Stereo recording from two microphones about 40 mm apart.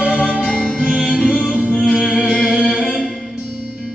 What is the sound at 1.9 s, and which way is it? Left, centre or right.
Music, centre.